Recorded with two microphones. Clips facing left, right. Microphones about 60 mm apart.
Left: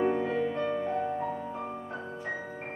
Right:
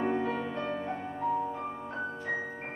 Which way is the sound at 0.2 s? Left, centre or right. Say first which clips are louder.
Left 3 dB; centre.